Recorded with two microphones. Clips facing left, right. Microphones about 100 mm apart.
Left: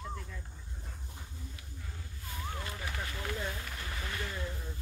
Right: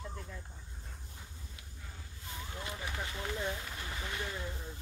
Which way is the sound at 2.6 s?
20° right (ahead or behind).